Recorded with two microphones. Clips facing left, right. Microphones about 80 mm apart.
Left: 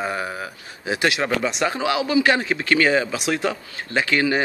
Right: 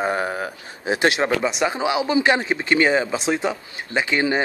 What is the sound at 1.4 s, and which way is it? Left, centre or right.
Speech, centre.